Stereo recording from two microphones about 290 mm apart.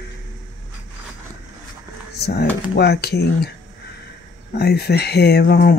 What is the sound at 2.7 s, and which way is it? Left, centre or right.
Speech, left.